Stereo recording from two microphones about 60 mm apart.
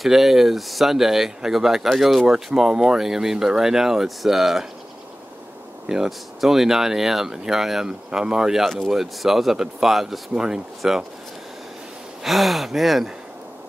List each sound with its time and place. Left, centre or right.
0.0 s speech: centre
5.9 s speech: centre
12.2 s speech: centre